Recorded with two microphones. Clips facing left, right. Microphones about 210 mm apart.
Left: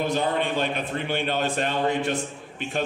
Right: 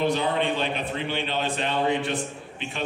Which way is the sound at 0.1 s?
45° left (ahead or behind).